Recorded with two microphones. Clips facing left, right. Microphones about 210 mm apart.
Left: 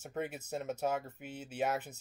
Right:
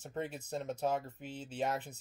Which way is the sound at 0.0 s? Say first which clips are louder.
Left 1 dB; 5° left (ahead or behind).